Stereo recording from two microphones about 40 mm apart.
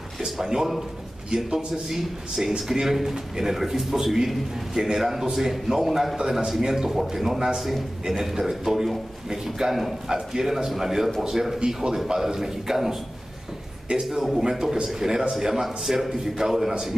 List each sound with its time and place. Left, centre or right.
0.2 s speech: centre
13.9 s a man's voice: right
14.4 s speech: centre